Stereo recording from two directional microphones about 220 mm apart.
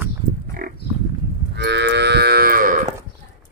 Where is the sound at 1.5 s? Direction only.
50° right (ahead or behind).